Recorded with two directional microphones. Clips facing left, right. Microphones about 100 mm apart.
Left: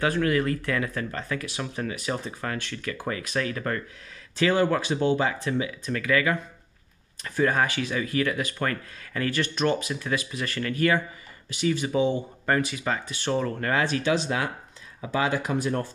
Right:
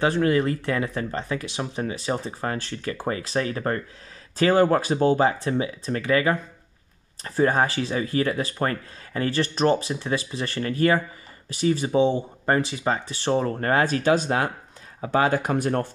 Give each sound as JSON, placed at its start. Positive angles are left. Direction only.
{"t": 0.0, "sound": "speech", "side_deg": -25}